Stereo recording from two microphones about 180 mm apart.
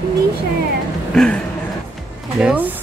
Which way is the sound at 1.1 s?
5° left (ahead or behind).